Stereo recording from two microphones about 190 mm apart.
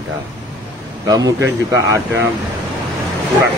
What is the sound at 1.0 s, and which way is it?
Speech, 20° right (ahead or behind).